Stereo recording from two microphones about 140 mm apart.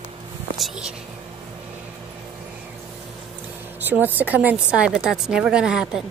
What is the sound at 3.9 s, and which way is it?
A woman's voice, 15° right (ahead or behind).